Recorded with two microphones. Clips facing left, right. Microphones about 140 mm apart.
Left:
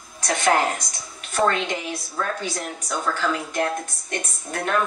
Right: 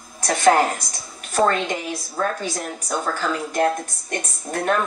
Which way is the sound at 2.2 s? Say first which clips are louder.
Right 3 dB; 40° right (ahead or behind).